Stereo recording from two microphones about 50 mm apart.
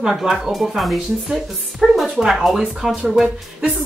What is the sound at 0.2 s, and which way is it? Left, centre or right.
Speech, centre.